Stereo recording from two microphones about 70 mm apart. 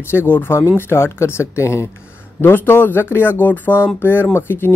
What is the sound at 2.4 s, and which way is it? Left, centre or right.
Speech, left.